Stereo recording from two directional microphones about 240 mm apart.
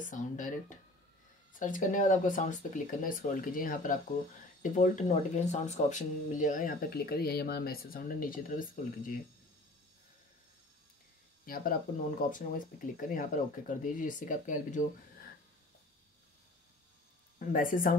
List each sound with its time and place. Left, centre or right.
0.0 s speech: left
11.4 s speech: left
17.4 s speech: left